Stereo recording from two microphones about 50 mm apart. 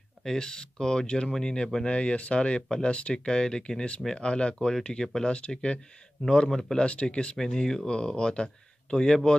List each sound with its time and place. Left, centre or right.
0.2 s speech: centre
1.9 s speech: left